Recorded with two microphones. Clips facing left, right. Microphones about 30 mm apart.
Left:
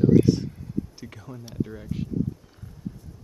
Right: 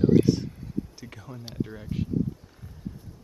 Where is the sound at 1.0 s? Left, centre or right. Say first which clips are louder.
Left 2 dB; centre.